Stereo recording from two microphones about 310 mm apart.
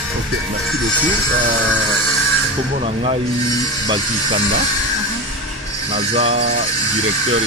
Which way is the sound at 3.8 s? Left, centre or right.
Centre.